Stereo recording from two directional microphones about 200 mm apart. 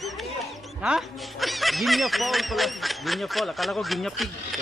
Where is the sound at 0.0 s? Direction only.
Centre (ahead or behind).